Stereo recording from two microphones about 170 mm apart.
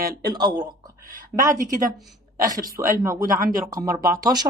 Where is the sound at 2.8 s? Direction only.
20° right (ahead or behind).